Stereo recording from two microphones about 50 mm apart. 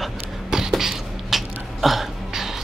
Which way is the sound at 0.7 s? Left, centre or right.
Centre.